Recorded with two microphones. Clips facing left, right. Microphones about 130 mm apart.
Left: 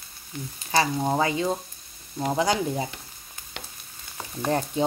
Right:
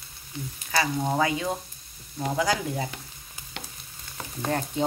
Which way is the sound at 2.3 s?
25° left (ahead or behind).